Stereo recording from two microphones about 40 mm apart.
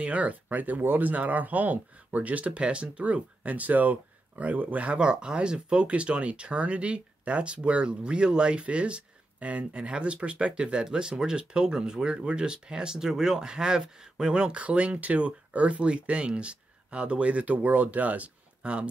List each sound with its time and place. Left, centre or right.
0.0 s speech: right
1.1 s speech: right
4.9 s speech: right
10.6 s speech: centre